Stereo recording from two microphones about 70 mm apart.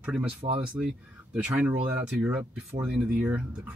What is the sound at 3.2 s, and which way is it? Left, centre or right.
Speech, right.